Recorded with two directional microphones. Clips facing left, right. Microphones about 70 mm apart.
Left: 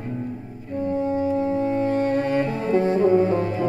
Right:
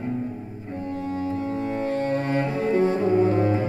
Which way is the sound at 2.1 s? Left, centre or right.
Right.